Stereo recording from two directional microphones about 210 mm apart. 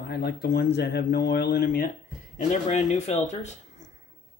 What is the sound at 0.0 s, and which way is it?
Speech, 50° left (ahead or behind).